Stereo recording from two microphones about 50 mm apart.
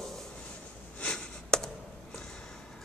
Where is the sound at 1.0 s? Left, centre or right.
Centre.